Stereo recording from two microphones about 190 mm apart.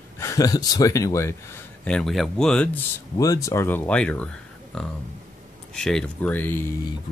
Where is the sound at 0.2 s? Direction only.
15° left (ahead or behind).